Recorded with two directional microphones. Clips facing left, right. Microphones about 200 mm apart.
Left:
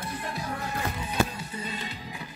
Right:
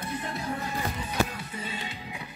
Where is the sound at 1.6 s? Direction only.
40° left (ahead or behind).